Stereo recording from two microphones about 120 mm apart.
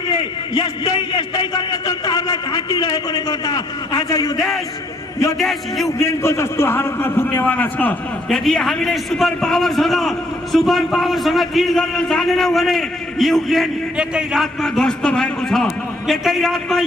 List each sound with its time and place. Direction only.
0.1 s a man's voice: 45° left (ahead or behind); by 4.5 s 30° left (ahead or behind)
5.4 s a man's voice: centre (ahead or behind)
5.9 s a man's voice: 25° left (ahead or behind)
8.5 s a man's voice: 5° left (ahead or behind)